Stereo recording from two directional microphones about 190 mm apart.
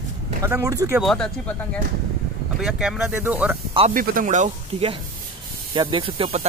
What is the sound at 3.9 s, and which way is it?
Speech, 45° right (ahead or behind).